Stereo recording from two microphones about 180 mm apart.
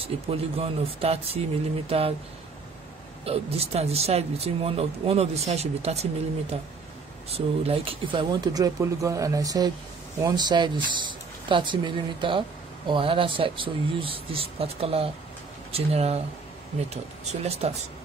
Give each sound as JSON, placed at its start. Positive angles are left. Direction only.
{"t": 0.0, "sound": "speech", "side_deg": -35}
{"t": 3.3, "sound": "speech", "side_deg": -35}
{"t": 7.2, "sound": "speech", "side_deg": -35}